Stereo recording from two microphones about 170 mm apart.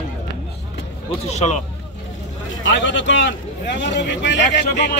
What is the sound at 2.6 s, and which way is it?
A man's voice, 90° left.